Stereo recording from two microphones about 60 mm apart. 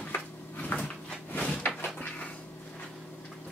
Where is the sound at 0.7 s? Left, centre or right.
Centre.